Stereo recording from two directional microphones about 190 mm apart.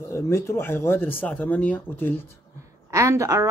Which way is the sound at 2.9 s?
15° right (ahead or behind).